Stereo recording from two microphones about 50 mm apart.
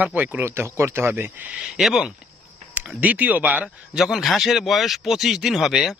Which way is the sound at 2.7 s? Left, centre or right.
Right.